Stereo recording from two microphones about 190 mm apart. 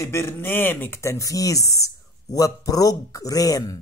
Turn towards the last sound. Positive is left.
turn(degrees=20)  # may be behind; listen again after turning